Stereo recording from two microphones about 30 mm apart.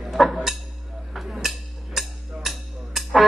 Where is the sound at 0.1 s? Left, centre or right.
Centre.